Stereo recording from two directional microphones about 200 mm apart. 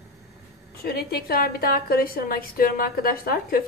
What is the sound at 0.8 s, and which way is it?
A woman's voice, 50° left (ahead or behind).